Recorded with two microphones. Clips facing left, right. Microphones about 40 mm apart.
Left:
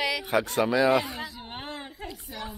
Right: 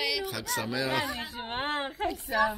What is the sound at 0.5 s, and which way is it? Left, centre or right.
Speech, left.